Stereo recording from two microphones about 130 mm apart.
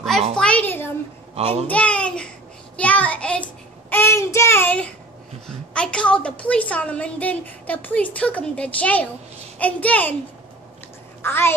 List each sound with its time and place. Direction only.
0.4 s a sound: 10° left (ahead or behind)
1.3 s a child's voice: 50° right (ahead or behind)
1.7 s a child's voice: 10° left (ahead or behind)
3.9 s a woman's voice: 20° left (ahead or behind)
11.2 s a woman's voice: 15° left (ahead or behind)